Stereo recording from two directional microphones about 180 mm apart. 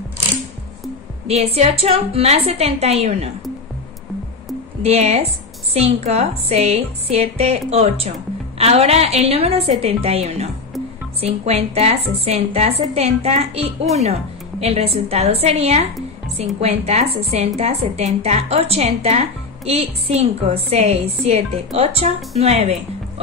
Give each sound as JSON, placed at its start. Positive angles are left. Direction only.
{"t": 1.2, "sound": "a woman's voice", "side_deg": -35}
{"t": 4.8, "sound": "a woman's voice", "side_deg": -35}